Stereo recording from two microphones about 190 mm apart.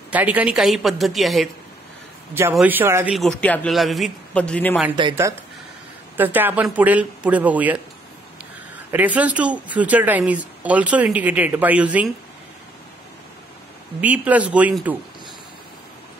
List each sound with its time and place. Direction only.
0.1 s a man's voice: 10° right (ahead or behind)
2.5 s speech: 10° right (ahead or behind)
3.2 s a man's voice: 5° left (ahead or behind)
5.0 s speech: 25° right (ahead or behind)
6.1 s speech: 10° right (ahead or behind)
8.9 s speech: 10° right (ahead or behind)
14.0 s speech: 5° right (ahead or behind)